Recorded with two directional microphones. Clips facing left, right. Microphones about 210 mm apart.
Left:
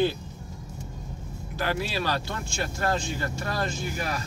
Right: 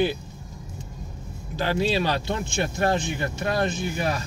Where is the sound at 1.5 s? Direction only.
20° right (ahead or behind).